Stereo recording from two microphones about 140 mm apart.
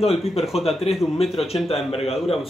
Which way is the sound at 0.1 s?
Centre (ahead or behind).